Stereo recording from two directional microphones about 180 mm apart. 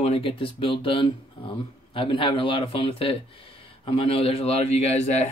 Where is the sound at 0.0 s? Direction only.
30° left (ahead or behind).